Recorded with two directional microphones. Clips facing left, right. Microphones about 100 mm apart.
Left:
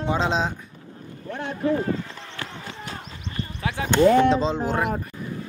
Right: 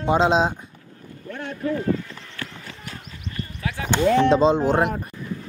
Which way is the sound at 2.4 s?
25° left (ahead or behind).